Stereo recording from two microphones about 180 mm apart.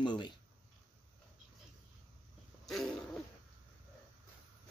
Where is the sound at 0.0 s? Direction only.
25° left (ahead or behind).